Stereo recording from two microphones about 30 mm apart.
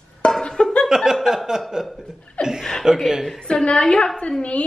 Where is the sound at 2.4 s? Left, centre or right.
Left.